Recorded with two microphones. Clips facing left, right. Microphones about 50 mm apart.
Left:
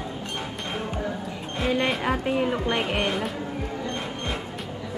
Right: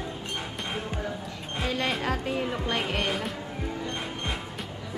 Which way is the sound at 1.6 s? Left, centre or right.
Centre.